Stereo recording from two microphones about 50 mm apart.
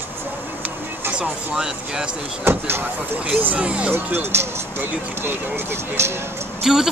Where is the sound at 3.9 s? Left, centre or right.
Right.